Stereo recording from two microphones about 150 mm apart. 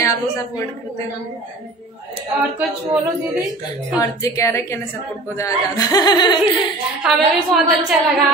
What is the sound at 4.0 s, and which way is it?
A woman's voice, 20° left (ahead or behind).